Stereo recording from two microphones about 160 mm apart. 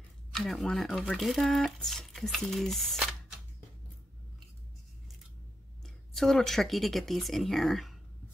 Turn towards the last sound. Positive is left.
turn(degrees=0)  # may be behind; listen again after turning